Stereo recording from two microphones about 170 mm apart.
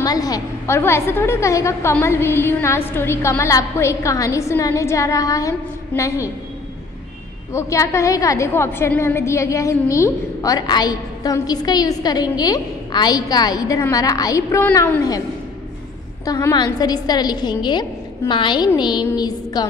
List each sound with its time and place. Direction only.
0.0 s a woman's voice: 20° left (ahead or behind)
7.5 s a woman's voice: 15° left (ahead or behind)
16.3 s a woman's voice: 20° left (ahead or behind)